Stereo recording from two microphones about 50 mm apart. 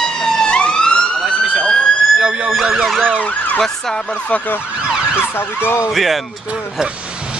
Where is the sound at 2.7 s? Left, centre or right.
Centre.